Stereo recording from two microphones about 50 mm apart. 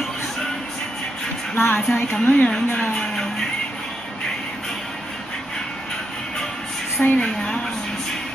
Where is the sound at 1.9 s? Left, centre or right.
Centre.